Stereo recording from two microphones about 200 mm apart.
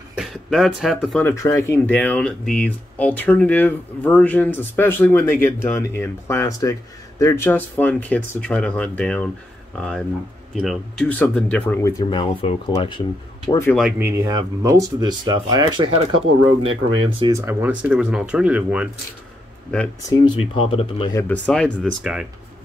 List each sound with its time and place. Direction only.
0.2 s speech: centre (ahead or behind)
1.2 s speech: 15° left (ahead or behind)
13.5 s speech: 15° left (ahead or behind)
13.7 s speech: 5° right (ahead or behind)
16.2 s speech: 90° right
17.2 s speech: 15° right (ahead or behind)
20.1 s speech: 25° left (ahead or behind)
21.1 s speech: 10° left (ahead or behind)